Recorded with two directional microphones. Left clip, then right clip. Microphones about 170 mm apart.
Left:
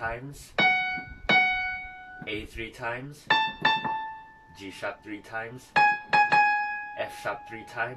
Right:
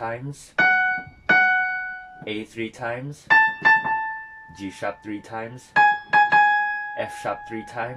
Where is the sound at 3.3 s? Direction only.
20° left (ahead or behind).